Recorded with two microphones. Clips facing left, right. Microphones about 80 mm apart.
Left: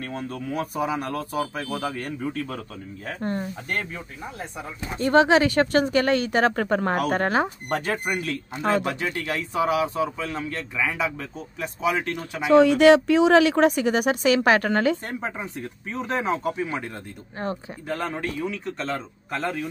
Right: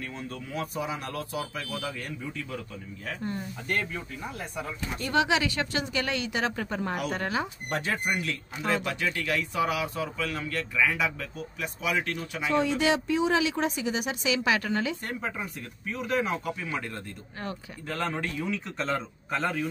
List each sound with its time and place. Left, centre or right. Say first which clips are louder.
0.0 s speech: left 6 dB; left
4.6 s speech: left 5 dB; left
12.2 s speech: left 10 dB; left
15.0 s speech: left 3 dB; left
17.8 s a man's voice: left 3 dB; centre